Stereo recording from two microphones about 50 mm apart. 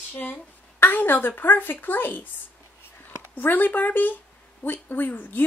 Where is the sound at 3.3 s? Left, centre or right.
Left.